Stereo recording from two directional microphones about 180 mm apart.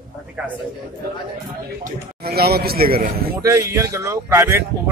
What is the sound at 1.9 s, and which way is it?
A man's voice, 60° right (ahead or behind).